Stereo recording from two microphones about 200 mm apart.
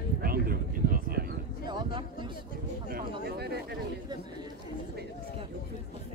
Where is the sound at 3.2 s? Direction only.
55° right (ahead or behind).